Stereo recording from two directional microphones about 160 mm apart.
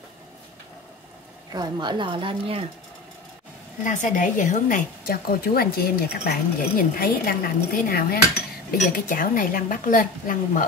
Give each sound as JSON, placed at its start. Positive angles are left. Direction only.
{"t": 1.5, "sound": "a woman's voice", "side_deg": -25}
{"t": 3.8, "sound": "speech", "side_deg": 50}
{"t": 6.8, "sound": "dishes", "side_deg": 65}
{"t": 8.9, "sound": "speech", "side_deg": 60}